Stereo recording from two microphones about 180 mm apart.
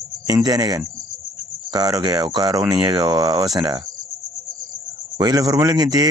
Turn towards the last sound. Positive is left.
turn(degrees=-20)  # may be behind; listen again after turning